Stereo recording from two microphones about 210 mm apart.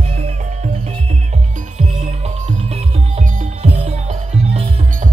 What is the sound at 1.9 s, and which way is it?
Music, 30° right (ahead or behind).